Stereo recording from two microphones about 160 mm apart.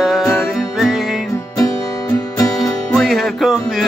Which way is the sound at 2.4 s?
20° left (ahead or behind).